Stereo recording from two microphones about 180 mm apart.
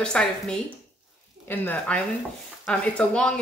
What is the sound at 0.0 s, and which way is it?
A woman's voice, 5° left (ahead or behind).